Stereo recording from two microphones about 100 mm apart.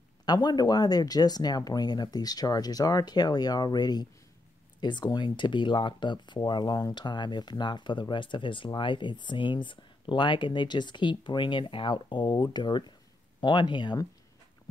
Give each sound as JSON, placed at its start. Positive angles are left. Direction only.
{"t": 0.2, "sound": "speech", "side_deg": 45}